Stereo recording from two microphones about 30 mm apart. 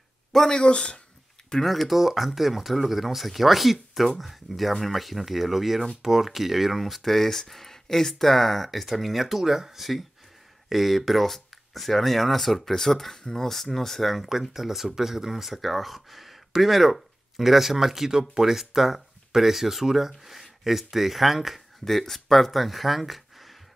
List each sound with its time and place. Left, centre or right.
0.5 s speech: left
1.6 s speech: centre
7.0 s speech: centre
21.8 s speech: centre